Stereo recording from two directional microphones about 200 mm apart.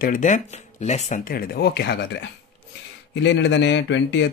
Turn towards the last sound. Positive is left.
turn(degrees=65)  # may be behind; listen again after turning